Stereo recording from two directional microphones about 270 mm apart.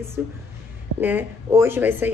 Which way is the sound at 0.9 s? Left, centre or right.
Right.